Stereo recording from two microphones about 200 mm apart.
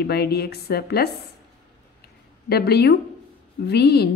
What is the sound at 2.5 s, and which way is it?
Speech, 55° left (ahead or behind).